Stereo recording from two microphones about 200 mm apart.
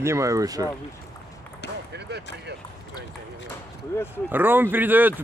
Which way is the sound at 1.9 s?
60° right (ahead or behind).